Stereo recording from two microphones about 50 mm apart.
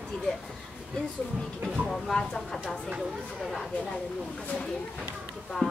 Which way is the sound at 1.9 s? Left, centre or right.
Centre.